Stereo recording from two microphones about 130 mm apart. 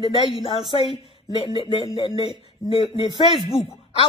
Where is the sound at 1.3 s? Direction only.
45° left (ahead or behind).